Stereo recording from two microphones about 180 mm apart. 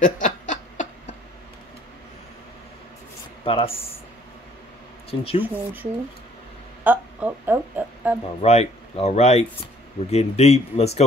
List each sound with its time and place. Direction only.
0.0 s snicker: 45° left (ahead or behind)
3.4 s speech: 30° left (ahead or behind)
5.4 s speech: 10° right (ahead or behind)
8.4 s speech: 35° left (ahead or behind)